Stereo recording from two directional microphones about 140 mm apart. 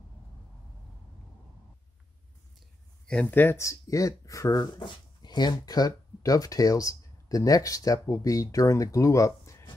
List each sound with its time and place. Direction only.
3.1 s speech: 10° left (ahead or behind)